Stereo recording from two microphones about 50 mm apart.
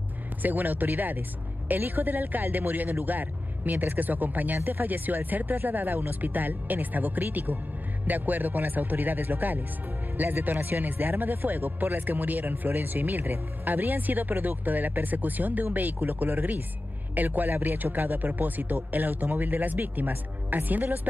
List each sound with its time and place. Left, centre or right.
0.4 s speech: right